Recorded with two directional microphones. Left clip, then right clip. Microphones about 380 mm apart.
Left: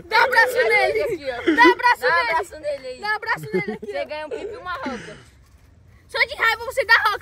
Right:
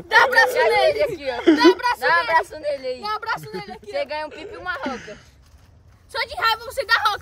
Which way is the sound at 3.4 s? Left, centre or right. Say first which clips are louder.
Left 7 dB; centre.